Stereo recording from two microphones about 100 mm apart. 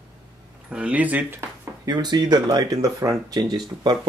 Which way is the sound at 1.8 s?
45° right (ahead or behind).